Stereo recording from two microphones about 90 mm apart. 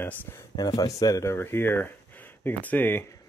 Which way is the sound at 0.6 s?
45° left (ahead or behind).